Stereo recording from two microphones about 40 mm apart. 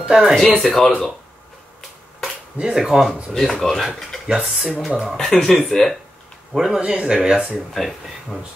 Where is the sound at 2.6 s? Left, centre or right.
Right.